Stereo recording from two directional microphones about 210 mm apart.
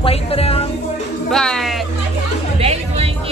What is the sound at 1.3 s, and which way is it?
Speech, centre (ahead or behind).